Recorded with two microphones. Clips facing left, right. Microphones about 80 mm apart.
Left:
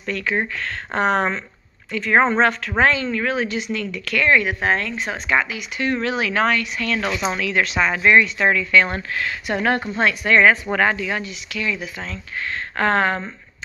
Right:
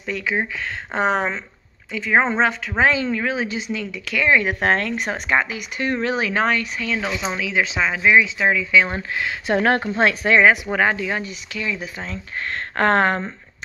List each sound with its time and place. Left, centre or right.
0.0 s speech: centre
2.8 s speech: centre
4.5 s speech: right
5.3 s speech: right
9.6 s a woman's voice: right
10.3 s speech: centre
11.0 s speech: right
12.4 s speech: right